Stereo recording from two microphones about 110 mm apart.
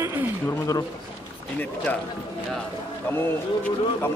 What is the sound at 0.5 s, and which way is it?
Speech, 30° left (ahead or behind).